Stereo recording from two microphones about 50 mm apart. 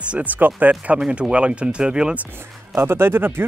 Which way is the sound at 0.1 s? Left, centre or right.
Right.